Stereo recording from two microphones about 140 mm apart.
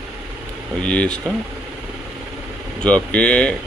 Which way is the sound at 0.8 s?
10° left (ahead or behind).